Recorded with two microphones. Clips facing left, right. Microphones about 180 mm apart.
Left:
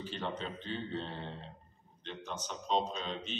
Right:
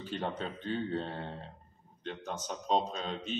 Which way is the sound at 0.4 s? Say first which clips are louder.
Right 4 dB; 45° right (ahead or behind).